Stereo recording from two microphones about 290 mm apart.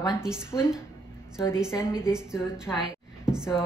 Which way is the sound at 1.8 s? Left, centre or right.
Centre.